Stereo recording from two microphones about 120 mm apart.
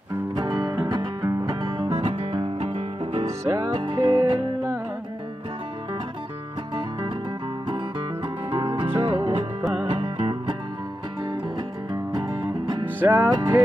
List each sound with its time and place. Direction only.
0.4 s music: 35° right (ahead or behind)
1.9 s music: 65° right (ahead or behind)
3.3 s music: 25° right (ahead or behind)
3.7 s music: 45° right (ahead or behind)
6.7 s music: 45° right (ahead or behind)
8.7 s music: 50° right (ahead or behind)
12.8 s music: 15° right (ahead or behind)